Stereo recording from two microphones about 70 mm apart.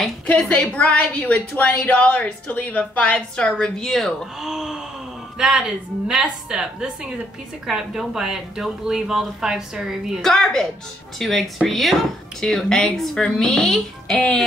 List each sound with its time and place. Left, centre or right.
0.7 s a woman's voice: centre
4.4 s speech: centre
10.2 s speech: centre